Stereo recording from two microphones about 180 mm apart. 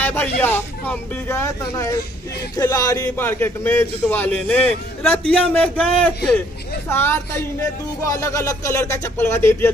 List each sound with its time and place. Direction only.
0.0 s a man's voice: 10° left (ahead or behind)